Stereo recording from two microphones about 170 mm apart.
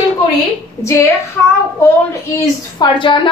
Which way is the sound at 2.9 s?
30° left (ahead or behind).